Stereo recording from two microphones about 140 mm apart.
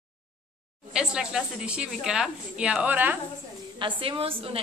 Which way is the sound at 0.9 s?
5° right (ahead or behind).